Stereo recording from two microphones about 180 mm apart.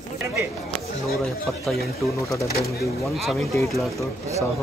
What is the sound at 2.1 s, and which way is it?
Speech, 15° left (ahead or behind).